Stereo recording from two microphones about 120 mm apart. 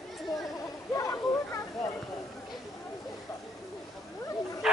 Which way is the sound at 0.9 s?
25° left (ahead or behind).